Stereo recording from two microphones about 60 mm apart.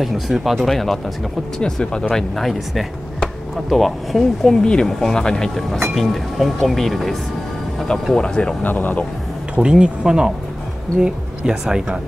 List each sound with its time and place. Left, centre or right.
0.0 s speech: centre
1.6 s speech: centre
8.6 s speech: left
9.6 s speech: centre